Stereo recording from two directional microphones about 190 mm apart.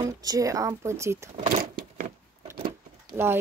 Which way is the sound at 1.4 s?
45° right (ahead or behind).